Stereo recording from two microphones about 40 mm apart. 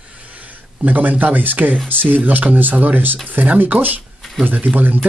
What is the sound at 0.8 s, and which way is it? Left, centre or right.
Speech, right.